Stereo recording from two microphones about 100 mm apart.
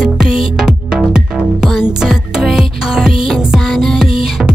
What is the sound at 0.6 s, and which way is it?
Music, 5° right (ahead or behind).